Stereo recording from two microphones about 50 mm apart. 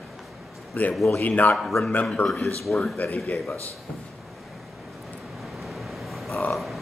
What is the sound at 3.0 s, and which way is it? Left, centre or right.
Speech, left.